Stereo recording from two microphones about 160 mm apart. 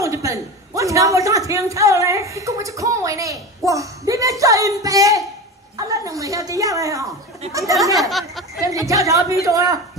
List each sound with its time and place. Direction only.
0.0 s a man's voice: 20° right (ahead or behind)
7.4 s speech: 40° right (ahead or behind)
7.9 s speech: centre (ahead or behind)
8.5 s a man's voice: 20° right (ahead or behind)